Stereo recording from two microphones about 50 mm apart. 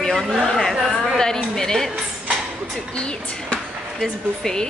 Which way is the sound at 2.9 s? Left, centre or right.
Centre.